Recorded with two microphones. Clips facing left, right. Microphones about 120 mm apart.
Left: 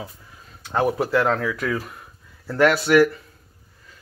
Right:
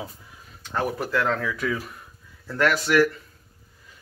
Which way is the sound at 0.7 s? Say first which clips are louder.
Left 5 dB; 15° left (ahead or behind).